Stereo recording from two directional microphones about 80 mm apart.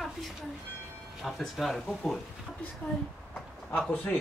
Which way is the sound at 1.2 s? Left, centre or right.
Centre.